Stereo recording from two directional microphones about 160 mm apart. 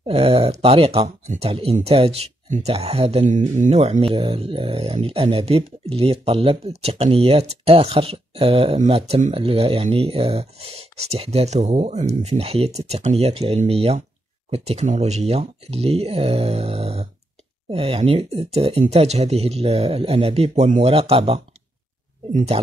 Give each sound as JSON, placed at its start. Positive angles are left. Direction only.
{"t": 0.0, "sound": "speech", "side_deg": -35}